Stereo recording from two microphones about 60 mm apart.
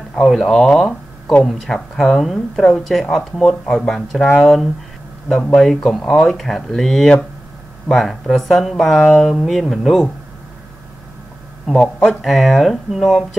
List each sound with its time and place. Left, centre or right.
0.2 s speech: centre
0.7 s a sound: centre
1.4 s speech: centre
5.4 s speech: centre
5.7 s speech: centre
11.6 s speech: centre